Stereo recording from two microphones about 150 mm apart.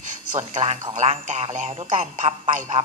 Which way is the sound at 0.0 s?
55° right (ahead or behind).